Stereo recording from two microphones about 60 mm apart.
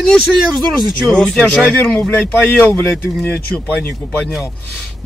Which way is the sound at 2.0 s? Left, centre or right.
Left.